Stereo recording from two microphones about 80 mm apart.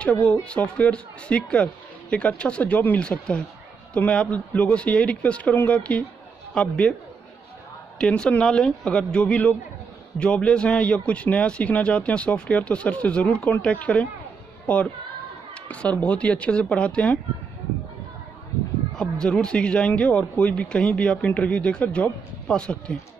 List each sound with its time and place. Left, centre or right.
0.0 s speech: centre
8.0 s speech: centre
18.9 s speech: centre